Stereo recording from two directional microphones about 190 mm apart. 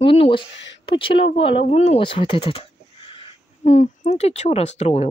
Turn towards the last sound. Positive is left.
turn(degrees=35)  # may be behind; listen again after turning